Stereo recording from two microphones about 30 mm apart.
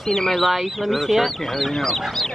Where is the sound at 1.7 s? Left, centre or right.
Centre.